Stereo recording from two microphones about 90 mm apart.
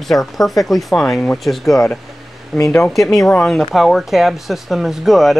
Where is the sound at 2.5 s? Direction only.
30° left (ahead or behind).